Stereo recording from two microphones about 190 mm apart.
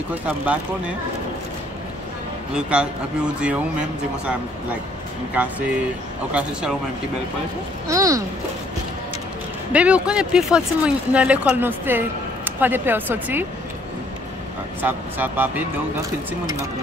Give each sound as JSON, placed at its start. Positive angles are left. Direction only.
{"t": 0.1, "sound": "speech", "side_deg": -5}
{"t": 2.5, "sound": "speech", "side_deg": -5}
{"t": 5.3, "sound": "speech", "side_deg": -5}
{"t": 7.9, "sound": "speech", "side_deg": -15}
{"t": 9.7, "sound": "speech", "side_deg": -5}
{"t": 14.8, "sound": "speech", "side_deg": -10}